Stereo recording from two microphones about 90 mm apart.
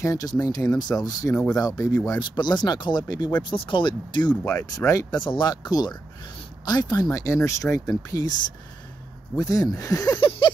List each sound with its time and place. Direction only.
0.0 s speech: 40° left (ahead or behind)
2.1 s speech: 55° left (ahead or behind)
3.4 s speech: 70° left (ahead or behind)
4.5 s speech: 40° left (ahead or behind)
5.2 s speech: 55° left (ahead or behind)
9.4 s speech: 40° left (ahead or behind)